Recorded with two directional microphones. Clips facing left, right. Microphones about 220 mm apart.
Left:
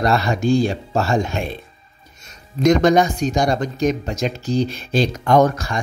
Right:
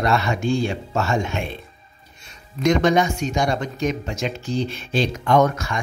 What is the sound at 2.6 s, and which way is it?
A man's voice, 40° left (ahead or behind).